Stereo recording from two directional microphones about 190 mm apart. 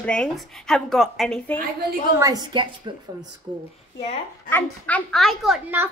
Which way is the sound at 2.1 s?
20° right (ahead or behind).